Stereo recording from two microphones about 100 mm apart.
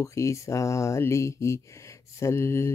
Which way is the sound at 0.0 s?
30° left (ahead or behind).